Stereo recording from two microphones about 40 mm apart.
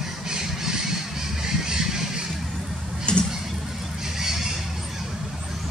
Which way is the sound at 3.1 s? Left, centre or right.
Left.